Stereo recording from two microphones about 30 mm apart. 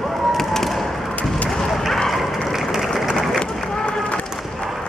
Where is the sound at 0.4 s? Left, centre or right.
Centre.